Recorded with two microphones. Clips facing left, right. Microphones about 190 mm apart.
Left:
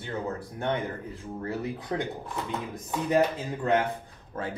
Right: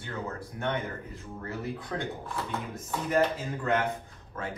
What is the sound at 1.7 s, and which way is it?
Speech, 20° left (ahead or behind).